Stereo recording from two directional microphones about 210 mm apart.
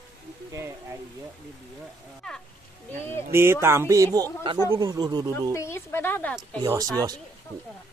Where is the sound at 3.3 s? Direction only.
10° right (ahead or behind).